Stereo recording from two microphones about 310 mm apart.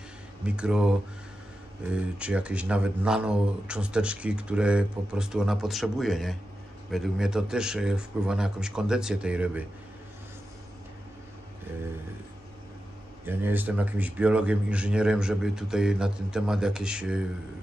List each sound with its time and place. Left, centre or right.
0.6 s speech: centre
13.2 s speech: centre